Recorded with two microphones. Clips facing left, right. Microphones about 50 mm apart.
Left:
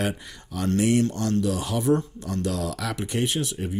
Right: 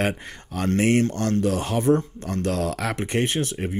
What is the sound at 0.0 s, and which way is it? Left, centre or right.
Speech, right.